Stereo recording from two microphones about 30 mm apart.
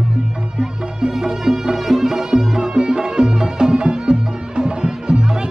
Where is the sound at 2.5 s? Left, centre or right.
Right.